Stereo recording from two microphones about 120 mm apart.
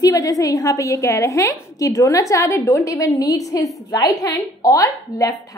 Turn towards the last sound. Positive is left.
turn(degrees=30)  # may be behind; listen again after turning